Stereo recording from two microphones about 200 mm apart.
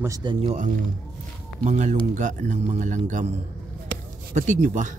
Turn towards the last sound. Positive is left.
turn(degrees=-40)  # may be behind; listen again after turning